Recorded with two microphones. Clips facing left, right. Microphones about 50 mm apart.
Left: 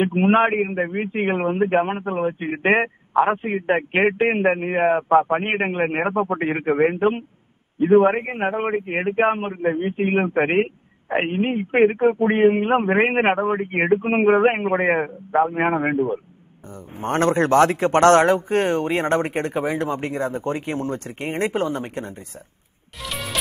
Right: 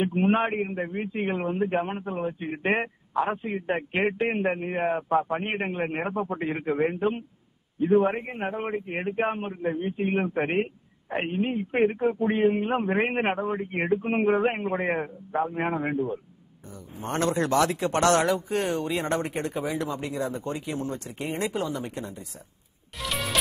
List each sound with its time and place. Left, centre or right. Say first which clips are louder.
0.0 s a man's voice: left 6 dB; left
22.9 s music: even; centre